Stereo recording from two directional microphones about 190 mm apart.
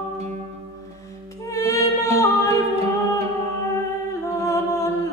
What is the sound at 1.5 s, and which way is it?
Music, 15° left (ahead or behind).